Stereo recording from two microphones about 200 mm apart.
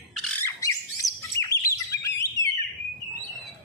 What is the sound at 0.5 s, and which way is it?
Chirp, 15° left (ahead or behind).